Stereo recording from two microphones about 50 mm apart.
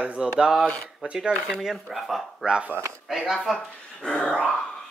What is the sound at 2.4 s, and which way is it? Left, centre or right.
Speech, centre.